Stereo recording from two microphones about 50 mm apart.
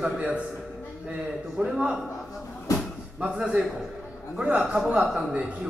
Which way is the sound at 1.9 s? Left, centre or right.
Centre.